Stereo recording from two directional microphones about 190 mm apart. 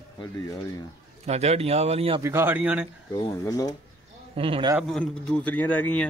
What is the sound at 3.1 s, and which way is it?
Speech, 20° left (ahead or behind).